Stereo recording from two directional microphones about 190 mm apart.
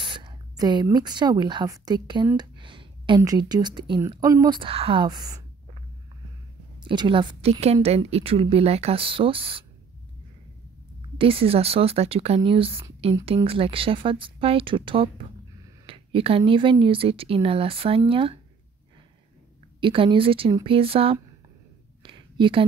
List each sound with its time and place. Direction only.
0.0 s speech: 25° right (ahead or behind)
2.3 s a sound: 25° right (ahead or behind)
3.2 s a woman's voice: 20° right (ahead or behind)
6.8 s a woman's voice: 25° right (ahead or behind)
11.1 s a woman's voice: 30° right (ahead or behind)
19.8 s a woman's voice: 25° right (ahead or behind)
22.0 s a sound: 25° right (ahead or behind)